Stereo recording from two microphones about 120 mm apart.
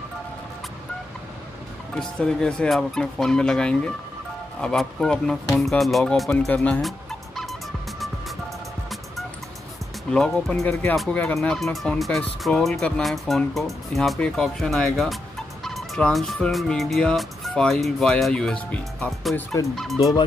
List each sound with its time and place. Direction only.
2.0 s speech: 5° left (ahead or behind)
6.8 s fowl: centre (ahead or behind)
10.1 s speech: 5° left (ahead or behind)
15.6 s fowl: centre (ahead or behind)
16.3 s speech: 5° left (ahead or behind)
20.0 s speech: 30° left (ahead or behind)